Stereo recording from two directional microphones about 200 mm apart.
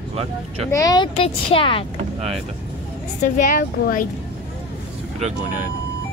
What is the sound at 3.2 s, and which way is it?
Speech, 40° left (ahead or behind).